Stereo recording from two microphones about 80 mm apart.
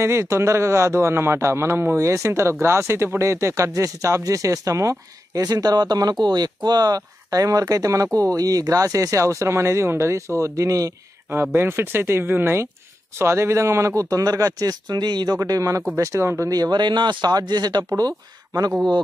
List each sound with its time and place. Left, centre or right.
0.0 s a man's voice: right
11.5 s speech: right
15.3 s a man's voice: right
16.5 s speech: right